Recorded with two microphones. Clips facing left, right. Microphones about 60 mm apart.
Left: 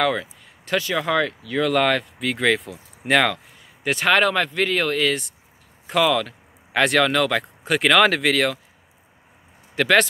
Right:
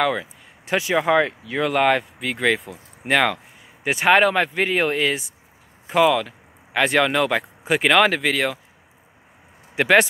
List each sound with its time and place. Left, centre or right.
0.0 s speech: centre
9.8 s speech: centre